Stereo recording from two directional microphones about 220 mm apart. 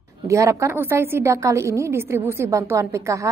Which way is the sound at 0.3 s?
15° right (ahead or behind).